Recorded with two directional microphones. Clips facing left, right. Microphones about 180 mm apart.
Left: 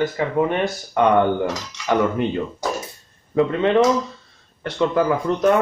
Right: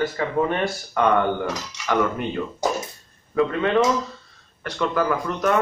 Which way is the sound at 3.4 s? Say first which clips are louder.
Left 3 dB; 25° left (ahead or behind).